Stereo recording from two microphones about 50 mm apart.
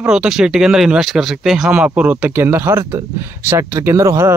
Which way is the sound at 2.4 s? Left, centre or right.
Right.